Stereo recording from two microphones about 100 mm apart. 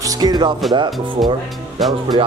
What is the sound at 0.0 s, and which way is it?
Speech, 40° right (ahead or behind).